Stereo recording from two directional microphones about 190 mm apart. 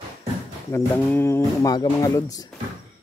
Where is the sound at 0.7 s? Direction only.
10° left (ahead or behind).